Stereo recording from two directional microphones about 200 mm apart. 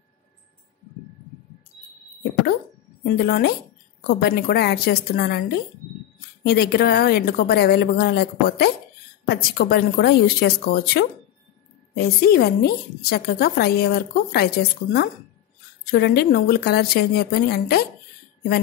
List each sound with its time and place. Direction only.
3.0 s a woman's voice: 50° left (ahead or behind)